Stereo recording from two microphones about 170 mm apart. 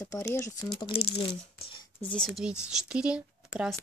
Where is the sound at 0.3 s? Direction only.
15° left (ahead or behind).